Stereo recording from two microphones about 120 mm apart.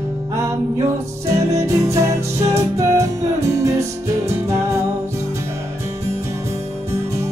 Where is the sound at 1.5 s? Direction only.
25° right (ahead or behind).